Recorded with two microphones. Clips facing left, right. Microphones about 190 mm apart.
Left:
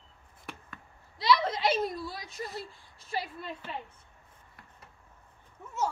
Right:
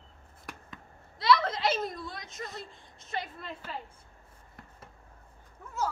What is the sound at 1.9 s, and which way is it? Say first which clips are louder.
A woman's voice: left 2 dB; 5° left (ahead or behind).